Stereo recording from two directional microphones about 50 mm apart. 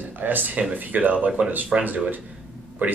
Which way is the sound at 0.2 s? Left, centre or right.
Right.